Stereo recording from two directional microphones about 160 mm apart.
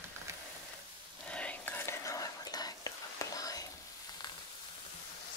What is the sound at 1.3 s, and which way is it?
Whispering, 5° left (ahead or behind).